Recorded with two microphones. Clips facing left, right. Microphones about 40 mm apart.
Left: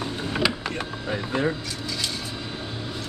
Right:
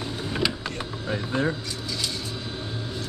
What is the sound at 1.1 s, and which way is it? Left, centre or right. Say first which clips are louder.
Speech: left 1 dB; left.